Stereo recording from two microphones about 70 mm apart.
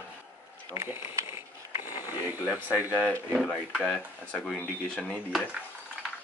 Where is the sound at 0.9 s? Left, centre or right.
Right.